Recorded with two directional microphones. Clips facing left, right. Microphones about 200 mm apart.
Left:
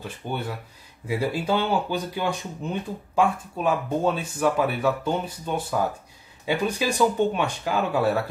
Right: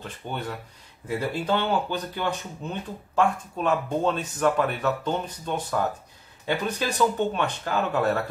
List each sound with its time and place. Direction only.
0.0 s speech: 10° left (ahead or behind)